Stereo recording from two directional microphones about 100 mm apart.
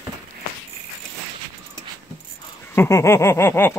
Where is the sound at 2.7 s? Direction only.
25° left (ahead or behind).